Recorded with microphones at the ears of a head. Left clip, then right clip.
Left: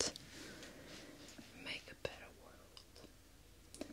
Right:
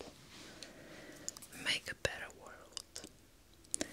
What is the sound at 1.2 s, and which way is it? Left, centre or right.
Whispering, right.